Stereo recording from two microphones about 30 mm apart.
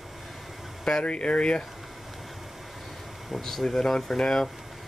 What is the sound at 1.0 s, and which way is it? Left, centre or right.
Speech, left.